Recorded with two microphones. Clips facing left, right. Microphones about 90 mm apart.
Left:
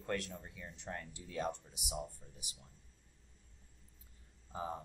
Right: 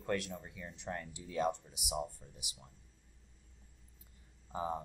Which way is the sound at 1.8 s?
85° right.